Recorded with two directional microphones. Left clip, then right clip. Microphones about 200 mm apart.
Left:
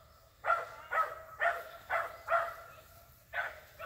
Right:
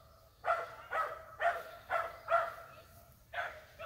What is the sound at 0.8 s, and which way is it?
Dog, 35° right (ahead or behind).